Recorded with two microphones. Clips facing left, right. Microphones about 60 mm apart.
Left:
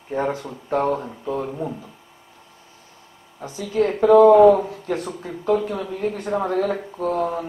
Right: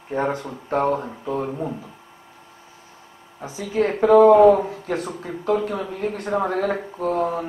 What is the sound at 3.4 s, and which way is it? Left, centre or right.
Speech, right.